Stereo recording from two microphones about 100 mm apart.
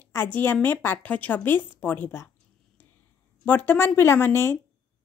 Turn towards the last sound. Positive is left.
turn(degrees=25)  # may be behind; listen again after turning